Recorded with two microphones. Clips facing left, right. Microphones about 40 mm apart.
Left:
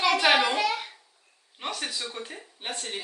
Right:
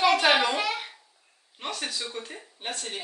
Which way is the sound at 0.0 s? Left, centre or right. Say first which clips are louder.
Right 1 dB; centre.